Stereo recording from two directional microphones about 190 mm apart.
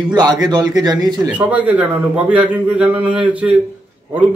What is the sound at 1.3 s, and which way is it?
A man's voice, 10° right (ahead or behind).